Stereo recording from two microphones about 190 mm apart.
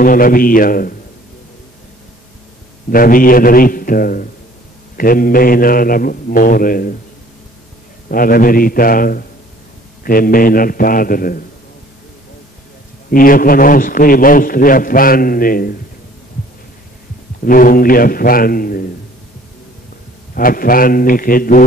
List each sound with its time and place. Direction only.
0.0 s a man's voice: 45° left (ahead or behind)
2.9 s a man's voice: 45° left (ahead or behind)
8.1 s a man's voice: 50° left (ahead or behind)
13.1 s a man's voice: 50° left (ahead or behind)
17.5 s a man's voice: 45° left (ahead or behind)
20.3 s a man's voice: 50° left (ahead or behind)